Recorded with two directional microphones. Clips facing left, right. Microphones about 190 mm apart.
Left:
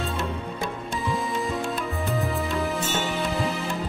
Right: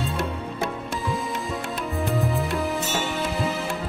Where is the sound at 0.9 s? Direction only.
Centre (ahead or behind).